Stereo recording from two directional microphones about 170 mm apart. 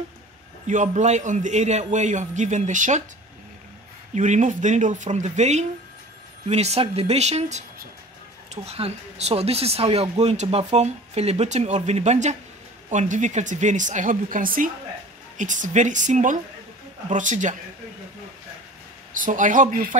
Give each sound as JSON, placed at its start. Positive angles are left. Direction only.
{"t": 0.7, "sound": "a man's voice", "side_deg": -45}
{"t": 4.1, "sound": "a man's voice", "side_deg": -45}
{"t": 19.1, "sound": "a man's voice", "side_deg": -50}